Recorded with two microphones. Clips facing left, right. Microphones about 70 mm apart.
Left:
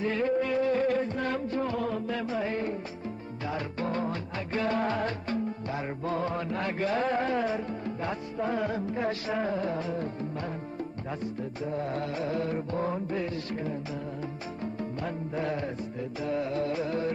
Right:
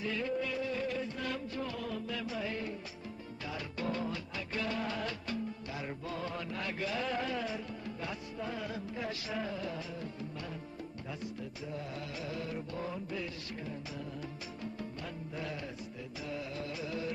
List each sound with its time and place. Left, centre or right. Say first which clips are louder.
0.0 s music: left 8 dB; left
11.6 s music: left 11 dB; left
15.3 s music: left 10 dB; left